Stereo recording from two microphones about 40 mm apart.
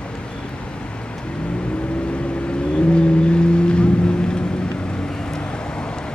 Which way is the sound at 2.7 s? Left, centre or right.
Left.